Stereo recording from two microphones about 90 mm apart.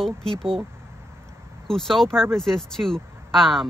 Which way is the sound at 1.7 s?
5° left (ahead or behind).